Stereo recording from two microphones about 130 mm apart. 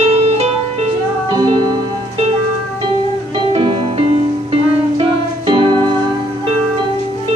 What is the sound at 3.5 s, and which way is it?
Music, 45° right (ahead or behind).